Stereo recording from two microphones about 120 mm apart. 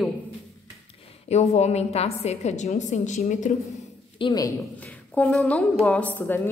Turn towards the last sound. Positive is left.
turn(degrees=15)  # may be behind; listen again after turning